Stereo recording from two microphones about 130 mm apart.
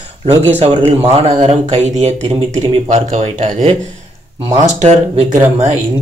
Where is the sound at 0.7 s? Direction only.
50° right (ahead or behind).